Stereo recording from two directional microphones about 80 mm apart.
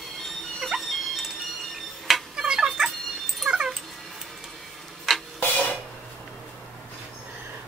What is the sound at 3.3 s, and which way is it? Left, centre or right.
Cat, centre.